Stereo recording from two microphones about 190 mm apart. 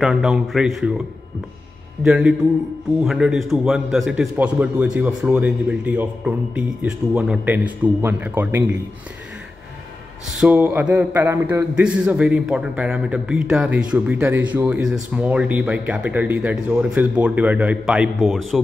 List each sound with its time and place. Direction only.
0.0 s speech: 5° right (ahead or behind)
2.0 s a man's voice: 5° right (ahead or behind)
10.3 s a man's voice: 5° right (ahead or behind)